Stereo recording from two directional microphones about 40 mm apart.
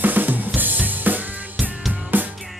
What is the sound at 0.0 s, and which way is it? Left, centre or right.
Drum kit, right.